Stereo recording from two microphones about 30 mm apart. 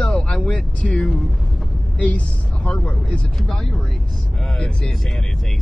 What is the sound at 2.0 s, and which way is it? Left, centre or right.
Speech, left.